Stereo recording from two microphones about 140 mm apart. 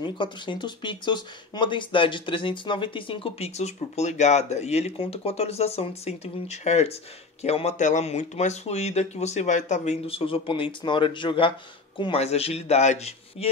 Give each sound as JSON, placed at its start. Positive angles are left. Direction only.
{"t": 0.0, "sound": "speech", "side_deg": 35}